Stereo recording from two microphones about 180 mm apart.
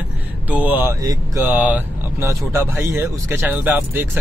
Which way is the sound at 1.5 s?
10° right (ahead or behind).